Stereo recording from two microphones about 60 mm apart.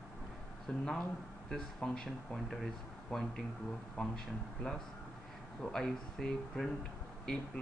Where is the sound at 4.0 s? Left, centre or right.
Left.